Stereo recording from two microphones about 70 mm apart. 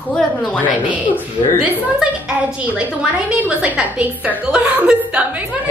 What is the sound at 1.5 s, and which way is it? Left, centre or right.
A woman's voice, centre.